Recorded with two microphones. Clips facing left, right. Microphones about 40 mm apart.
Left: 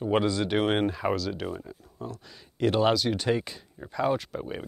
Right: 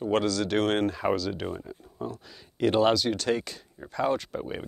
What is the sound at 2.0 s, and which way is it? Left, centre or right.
Speech, centre.